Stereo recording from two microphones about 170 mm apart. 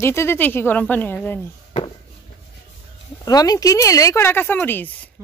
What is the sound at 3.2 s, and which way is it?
Speech, 20° left (ahead or behind).